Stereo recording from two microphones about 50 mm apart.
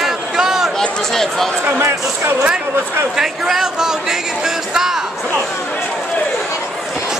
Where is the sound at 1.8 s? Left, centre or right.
Right.